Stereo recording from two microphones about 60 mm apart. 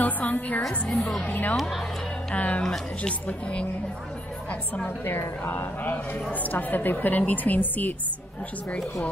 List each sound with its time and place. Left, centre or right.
0.0 s a woman's voice: left
5.4 s a woman's voice: left